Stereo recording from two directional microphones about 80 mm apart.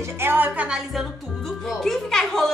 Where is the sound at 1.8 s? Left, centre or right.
Centre.